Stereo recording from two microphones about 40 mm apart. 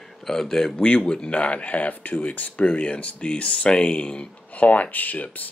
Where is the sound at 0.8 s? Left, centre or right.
Left.